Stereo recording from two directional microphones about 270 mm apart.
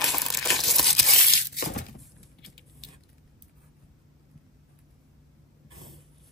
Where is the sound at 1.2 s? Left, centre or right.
Left.